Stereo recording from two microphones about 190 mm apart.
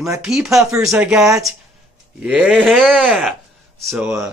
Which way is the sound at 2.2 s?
5° right (ahead or behind).